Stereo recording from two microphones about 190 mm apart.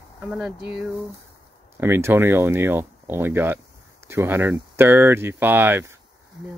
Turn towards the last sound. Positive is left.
turn(degrees=-10)  # may be behind; listen again after turning